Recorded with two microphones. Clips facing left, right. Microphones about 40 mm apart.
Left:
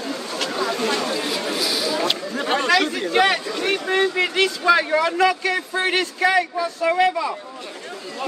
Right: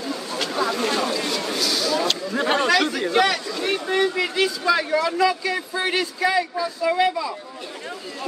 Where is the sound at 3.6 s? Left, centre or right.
Left.